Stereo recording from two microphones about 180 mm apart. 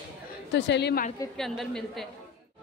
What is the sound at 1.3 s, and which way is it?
Speech, 5° left (ahead or behind).